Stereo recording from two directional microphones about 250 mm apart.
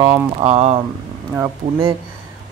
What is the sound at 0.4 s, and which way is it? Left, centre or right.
Speech, right.